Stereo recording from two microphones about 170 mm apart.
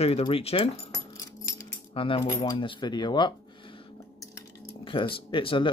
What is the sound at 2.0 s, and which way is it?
Speech, 30° left (ahead or behind).